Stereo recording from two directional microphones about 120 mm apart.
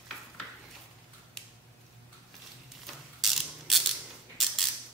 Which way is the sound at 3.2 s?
Centre (ahead or behind).